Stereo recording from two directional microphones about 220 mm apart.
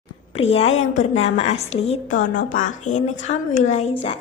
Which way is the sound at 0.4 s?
25° left (ahead or behind).